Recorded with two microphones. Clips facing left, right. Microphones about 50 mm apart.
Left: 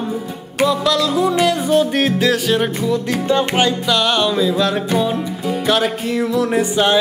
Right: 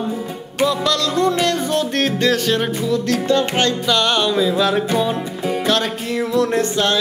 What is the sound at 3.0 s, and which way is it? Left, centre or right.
Music, centre.